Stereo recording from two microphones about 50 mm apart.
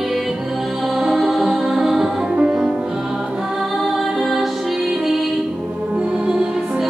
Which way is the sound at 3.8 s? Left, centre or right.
Centre.